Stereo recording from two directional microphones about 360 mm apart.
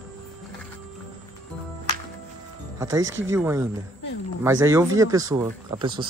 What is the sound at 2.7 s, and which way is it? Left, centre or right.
Music, centre.